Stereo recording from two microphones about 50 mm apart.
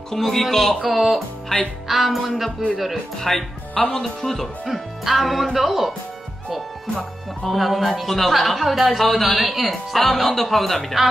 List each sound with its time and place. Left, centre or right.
0.1 s speech: centre
1.5 s music: centre
1.9 s speech: centre
3.7 s speech: left
4.0 s speech: centre
7.0 s speech: centre